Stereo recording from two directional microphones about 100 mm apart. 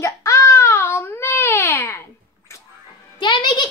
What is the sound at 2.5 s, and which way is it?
Music, 30° left (ahead or behind).